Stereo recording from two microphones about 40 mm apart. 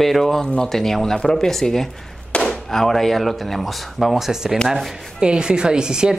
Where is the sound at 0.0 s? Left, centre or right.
Centre.